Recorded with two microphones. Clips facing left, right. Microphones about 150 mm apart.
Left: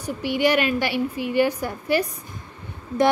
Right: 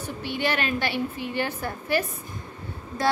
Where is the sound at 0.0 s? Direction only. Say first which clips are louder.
Left 6 dB; 15° left (ahead or behind).